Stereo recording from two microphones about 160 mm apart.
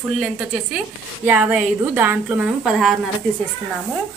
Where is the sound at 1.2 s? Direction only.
10° right (ahead or behind).